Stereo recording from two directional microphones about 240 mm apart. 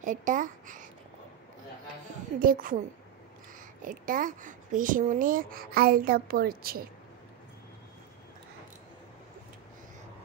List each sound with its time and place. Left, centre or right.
0.0 s a child's voice: right
2.4 s speech: right
3.8 s speech: right